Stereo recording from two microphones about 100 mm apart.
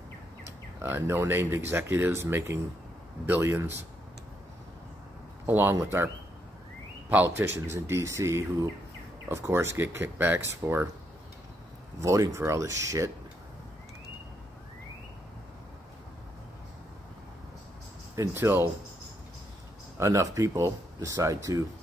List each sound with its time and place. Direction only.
0.8 s speech: 25° right (ahead or behind)
5.5 s speech: 25° right (ahead or behind)
7.3 s speech: 25° right (ahead or behind)
12.0 s speech: 30° right (ahead or behind)
18.3 s speech: 20° right (ahead or behind)
20.0 s speech: 30° right (ahead or behind)